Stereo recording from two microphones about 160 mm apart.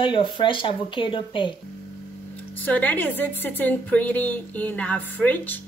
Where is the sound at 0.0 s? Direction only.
30° left (ahead or behind).